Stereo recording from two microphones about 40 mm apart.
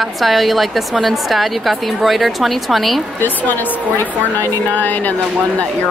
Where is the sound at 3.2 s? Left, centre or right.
Left.